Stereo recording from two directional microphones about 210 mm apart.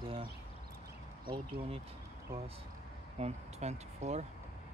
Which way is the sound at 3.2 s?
30° right (ahead or behind).